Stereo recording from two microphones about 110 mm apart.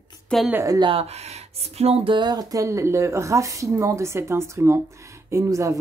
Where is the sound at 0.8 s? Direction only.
65° right (ahead or behind).